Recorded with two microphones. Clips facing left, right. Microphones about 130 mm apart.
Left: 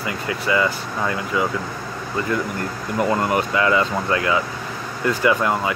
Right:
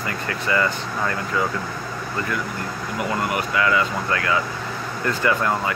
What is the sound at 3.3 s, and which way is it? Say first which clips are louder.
Speech: left 3 dB; 30° left (ahead or behind).